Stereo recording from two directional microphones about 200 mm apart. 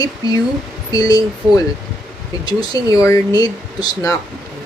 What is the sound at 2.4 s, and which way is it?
Speech, 20° left (ahead or behind).